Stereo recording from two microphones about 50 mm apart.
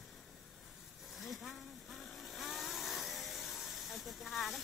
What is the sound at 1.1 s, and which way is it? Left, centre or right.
Vehicle, centre.